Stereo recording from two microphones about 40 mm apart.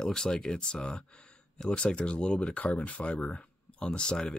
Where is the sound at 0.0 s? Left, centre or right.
Centre.